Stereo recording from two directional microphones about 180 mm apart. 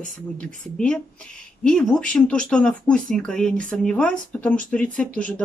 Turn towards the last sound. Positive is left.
turn(degrees=5)  # may be behind; listen again after turning